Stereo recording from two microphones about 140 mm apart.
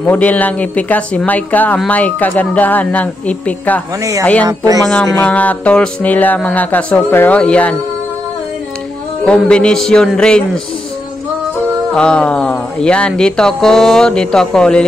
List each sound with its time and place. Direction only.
0.0 s speech: 10° left (ahead or behind)
4.0 s speech: 20° right (ahead or behind)
5.2 s speech: 10° left (ahead or behind)
9.2 s speech: 5° left (ahead or behind)
11.9 s speech: 5° left (ahead or behind)